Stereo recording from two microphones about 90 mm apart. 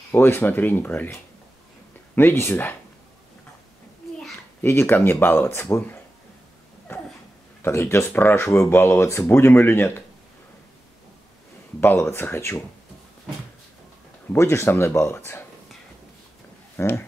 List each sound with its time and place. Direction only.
0.1 s speech: 25° left (ahead or behind)
2.1 s speech: 25° left (ahead or behind)
4.6 s speech: 25° left (ahead or behind)
7.6 s speech: 25° left (ahead or behind)
11.8 s speech: 25° left (ahead or behind)
14.3 s speech: 30° left (ahead or behind)
16.7 s speech: 25° left (ahead or behind)